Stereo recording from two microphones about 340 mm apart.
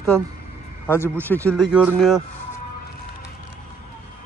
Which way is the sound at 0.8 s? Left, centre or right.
Centre.